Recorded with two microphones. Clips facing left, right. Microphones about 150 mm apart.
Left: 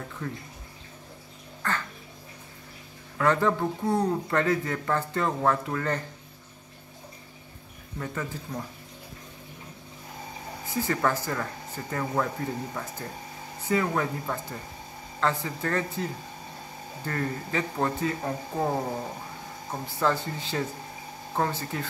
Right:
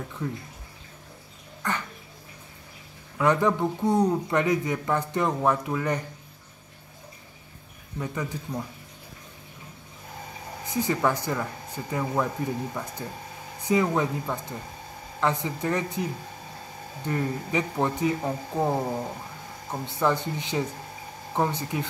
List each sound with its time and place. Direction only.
0.2 s speech: 15° right (ahead or behind)
1.6 s a sound: 15° right (ahead or behind)
3.2 s speech: 15° right (ahead or behind)
8.0 s speech: 15° right (ahead or behind)
10.7 s speech: 20° right (ahead or behind)